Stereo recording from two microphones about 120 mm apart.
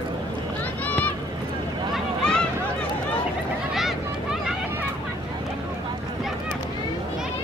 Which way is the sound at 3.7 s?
5° right (ahead or behind).